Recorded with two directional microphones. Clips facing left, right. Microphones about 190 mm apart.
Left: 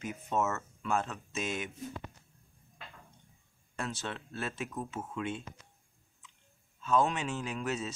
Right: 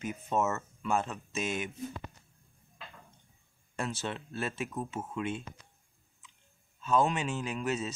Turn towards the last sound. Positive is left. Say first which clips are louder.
# right 2 dB
turn(degrees=0)  # may be behind; listen again after turning